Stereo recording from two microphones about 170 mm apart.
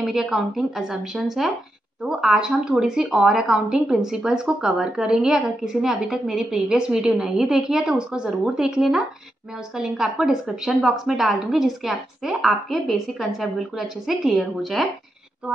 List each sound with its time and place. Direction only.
0.0 s speech: centre (ahead or behind)